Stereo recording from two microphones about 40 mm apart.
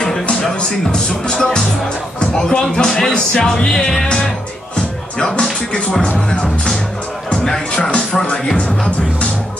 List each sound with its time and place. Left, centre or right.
0.6 s speech: left
5.4 s speech: centre
7.7 s speech: left